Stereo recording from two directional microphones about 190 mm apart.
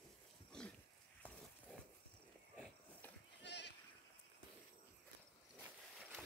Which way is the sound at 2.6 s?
10° left (ahead or behind).